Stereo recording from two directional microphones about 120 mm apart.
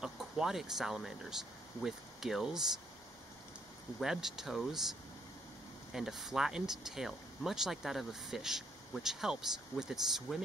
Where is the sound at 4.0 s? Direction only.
5° right (ahead or behind).